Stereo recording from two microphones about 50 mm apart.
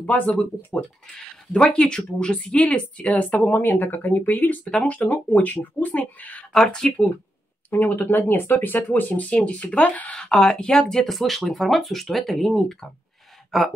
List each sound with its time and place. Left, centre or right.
0.0 s speech: left
1.5 s speech: left
4.6 s speech: left
6.7 s speech: centre
7.7 s speech: left
9.3 s speech: left
10.3 s speech: centre